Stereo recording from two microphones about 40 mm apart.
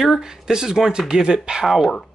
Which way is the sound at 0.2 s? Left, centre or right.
Centre.